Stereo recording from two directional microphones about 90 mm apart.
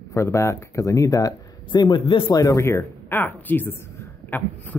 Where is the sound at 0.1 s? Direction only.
35° left (ahead or behind).